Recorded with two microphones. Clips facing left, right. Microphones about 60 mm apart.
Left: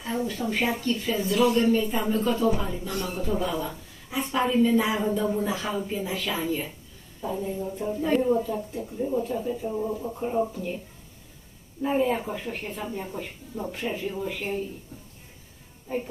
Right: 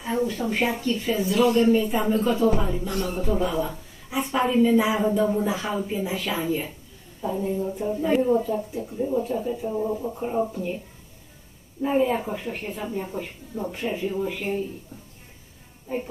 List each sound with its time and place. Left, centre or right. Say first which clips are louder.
0.0 s speech: right 3 dB; centre
11.8 s speech: right 2 dB; centre